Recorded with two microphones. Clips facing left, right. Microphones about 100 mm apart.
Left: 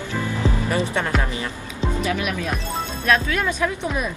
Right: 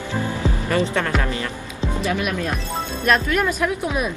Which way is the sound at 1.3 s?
20° left (ahead or behind).